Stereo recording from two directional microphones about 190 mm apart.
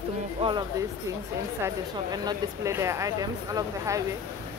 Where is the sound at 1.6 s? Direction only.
20° right (ahead or behind).